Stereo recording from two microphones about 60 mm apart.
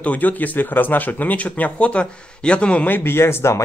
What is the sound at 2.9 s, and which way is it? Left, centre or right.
Speech, left.